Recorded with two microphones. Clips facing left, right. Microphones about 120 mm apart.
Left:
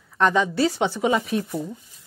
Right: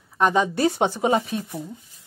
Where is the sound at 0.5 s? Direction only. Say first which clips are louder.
Right 1 dB; 55° right (ahead or behind).